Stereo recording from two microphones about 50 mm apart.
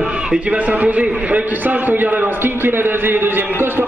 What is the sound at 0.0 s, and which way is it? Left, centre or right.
A man's voice, centre.